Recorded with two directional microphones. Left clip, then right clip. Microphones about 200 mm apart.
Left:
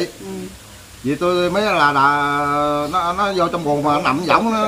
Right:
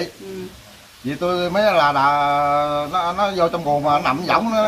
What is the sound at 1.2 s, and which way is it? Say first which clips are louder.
Mantra: even; 10° right (ahead or behind).